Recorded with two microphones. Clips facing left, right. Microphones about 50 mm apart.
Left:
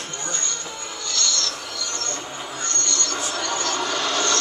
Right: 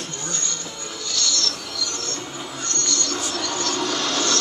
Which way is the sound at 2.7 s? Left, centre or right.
Centre.